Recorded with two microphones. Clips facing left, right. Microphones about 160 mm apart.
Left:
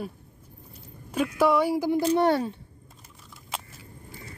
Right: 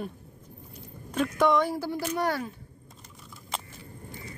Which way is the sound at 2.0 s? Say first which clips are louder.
Left 6 dB; 25° left (ahead or behind).